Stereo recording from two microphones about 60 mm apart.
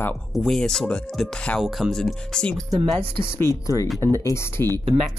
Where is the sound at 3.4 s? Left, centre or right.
Left.